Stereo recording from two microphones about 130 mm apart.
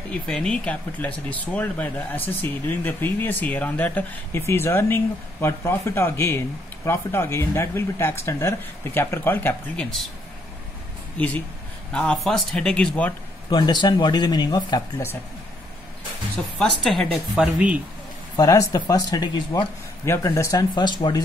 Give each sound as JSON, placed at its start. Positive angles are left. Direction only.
{"t": 0.3, "sound": "speech", "side_deg": 5}
{"t": 11.1, "sound": "speech", "side_deg": 10}
{"t": 13.5, "sound": "speech", "side_deg": 35}
{"t": 16.3, "sound": "speech", "side_deg": 5}
{"t": 18.3, "sound": "speech", "side_deg": 25}
{"t": 20.1, "sound": "speech", "side_deg": 20}